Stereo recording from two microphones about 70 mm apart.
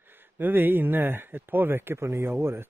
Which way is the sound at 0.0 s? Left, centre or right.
Right.